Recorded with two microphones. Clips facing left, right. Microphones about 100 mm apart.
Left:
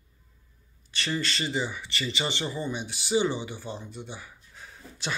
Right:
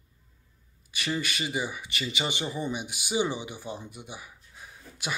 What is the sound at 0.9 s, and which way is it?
Speech, 10° right (ahead or behind).